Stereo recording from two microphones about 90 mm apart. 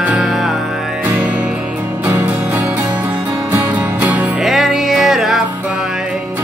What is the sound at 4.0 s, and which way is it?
Music, 20° right (ahead or behind).